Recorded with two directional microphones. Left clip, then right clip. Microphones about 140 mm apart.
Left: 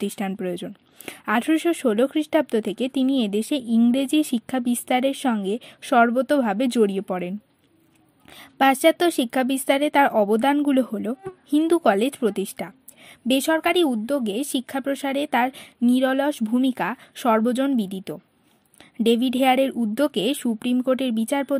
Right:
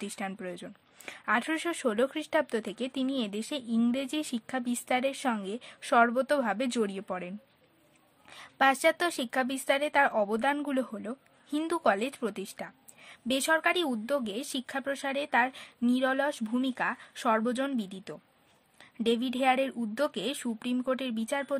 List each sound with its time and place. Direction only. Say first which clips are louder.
0.0 s a woman's voice: left 9 dB; 40° left (ahead or behind)